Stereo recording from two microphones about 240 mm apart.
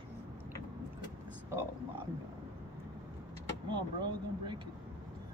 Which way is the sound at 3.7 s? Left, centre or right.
Centre.